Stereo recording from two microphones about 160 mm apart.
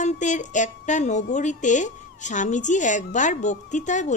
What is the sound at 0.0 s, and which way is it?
A woman's voice, 50° left (ahead or behind).